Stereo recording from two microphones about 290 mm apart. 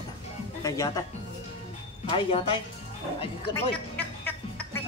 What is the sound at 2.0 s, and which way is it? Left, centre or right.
Speech, centre.